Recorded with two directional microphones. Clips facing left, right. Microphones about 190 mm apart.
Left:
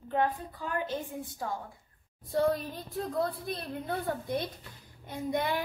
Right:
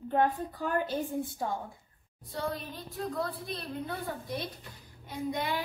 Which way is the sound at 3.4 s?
55° left (ahead or behind).